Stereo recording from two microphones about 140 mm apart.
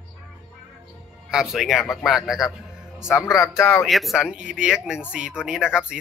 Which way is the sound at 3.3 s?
25° left (ahead or behind).